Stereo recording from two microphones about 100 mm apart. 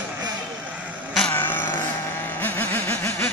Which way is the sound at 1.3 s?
20° left (ahead or behind).